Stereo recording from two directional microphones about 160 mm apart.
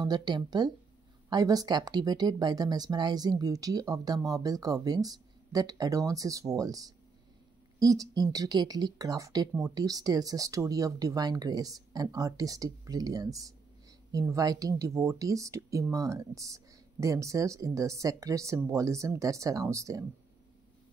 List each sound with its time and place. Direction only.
0.0 s speech: 25° right (ahead or behind)